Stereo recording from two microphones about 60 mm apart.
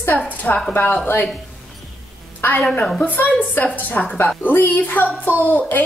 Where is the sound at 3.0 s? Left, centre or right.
Left.